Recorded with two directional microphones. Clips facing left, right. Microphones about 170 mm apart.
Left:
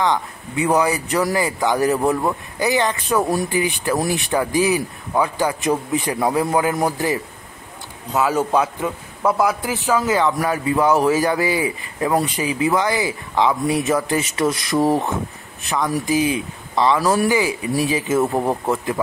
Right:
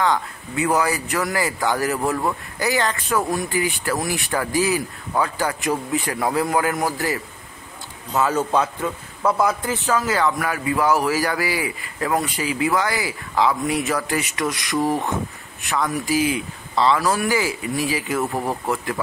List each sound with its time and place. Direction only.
0.0 s speech: 20° left (ahead or behind)
8.3 s a man's voice: 15° left (ahead or behind)
9.4 s speech: 5° left (ahead or behind)
9.8 s speech: 15° left (ahead or behind)
16.1 s speech: 20° left (ahead or behind)